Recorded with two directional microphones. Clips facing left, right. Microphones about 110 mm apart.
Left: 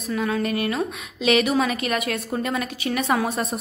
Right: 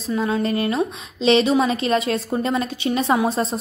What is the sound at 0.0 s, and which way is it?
A woman's voice, 25° right (ahead or behind).